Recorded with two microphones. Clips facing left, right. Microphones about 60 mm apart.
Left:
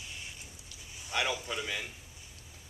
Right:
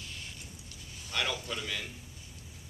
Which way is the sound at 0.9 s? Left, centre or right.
Centre.